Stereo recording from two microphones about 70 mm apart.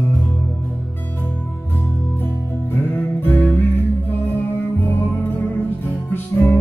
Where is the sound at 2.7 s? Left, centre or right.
Left.